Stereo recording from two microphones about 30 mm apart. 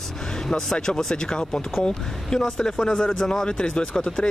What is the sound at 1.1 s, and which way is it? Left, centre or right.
Speech, left.